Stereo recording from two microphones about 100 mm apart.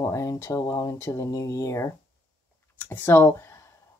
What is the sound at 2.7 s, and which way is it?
Speech, 20° left (ahead or behind).